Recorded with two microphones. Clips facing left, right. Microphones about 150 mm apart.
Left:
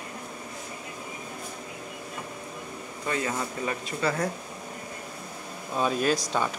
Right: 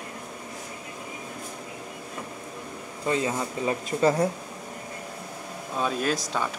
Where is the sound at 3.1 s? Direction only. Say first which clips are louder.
Right 4 dB; 25° right (ahead or behind).